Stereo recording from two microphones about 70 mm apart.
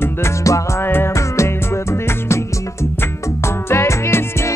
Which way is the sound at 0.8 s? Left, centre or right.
Left.